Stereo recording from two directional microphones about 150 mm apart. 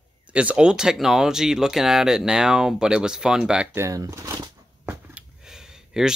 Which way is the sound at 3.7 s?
20° right (ahead or behind).